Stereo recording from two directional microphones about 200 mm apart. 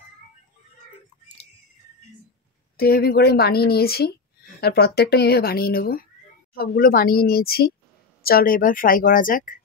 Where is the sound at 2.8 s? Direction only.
50° left (ahead or behind).